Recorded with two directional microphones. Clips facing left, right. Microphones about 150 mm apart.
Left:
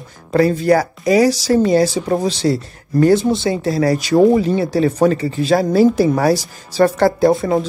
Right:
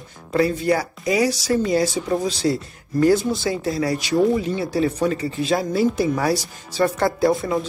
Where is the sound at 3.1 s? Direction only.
25° left (ahead or behind).